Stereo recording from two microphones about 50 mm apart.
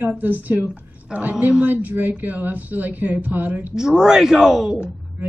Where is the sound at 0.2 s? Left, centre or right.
Right.